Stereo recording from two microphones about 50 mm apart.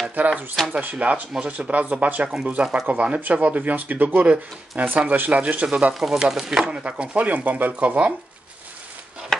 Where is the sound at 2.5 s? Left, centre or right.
Right.